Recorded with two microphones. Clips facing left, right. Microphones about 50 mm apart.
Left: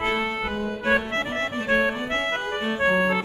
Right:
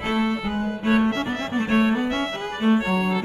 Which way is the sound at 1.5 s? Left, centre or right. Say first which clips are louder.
Right 3 dB; right.